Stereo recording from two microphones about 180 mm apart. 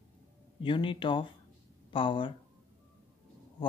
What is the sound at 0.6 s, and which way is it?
Speech, 30° left (ahead or behind).